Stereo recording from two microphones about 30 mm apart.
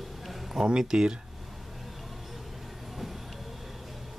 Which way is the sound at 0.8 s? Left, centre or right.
Right.